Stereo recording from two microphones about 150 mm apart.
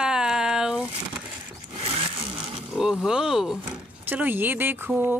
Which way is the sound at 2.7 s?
5° right (ahead or behind).